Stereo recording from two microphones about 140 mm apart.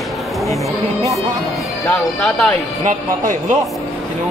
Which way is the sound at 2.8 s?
65° right (ahead or behind).